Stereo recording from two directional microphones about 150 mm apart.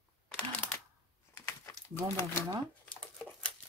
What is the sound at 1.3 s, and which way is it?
Crumpling, 15° left (ahead or behind).